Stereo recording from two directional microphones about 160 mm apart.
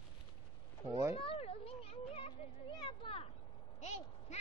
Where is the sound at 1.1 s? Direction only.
35° left (ahead or behind).